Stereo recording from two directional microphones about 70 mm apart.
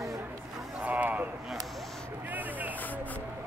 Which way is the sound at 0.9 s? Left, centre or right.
Right.